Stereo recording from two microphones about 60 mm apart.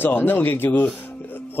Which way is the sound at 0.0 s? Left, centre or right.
Left.